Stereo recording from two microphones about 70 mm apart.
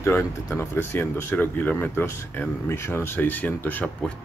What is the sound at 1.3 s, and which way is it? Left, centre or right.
Speech, left.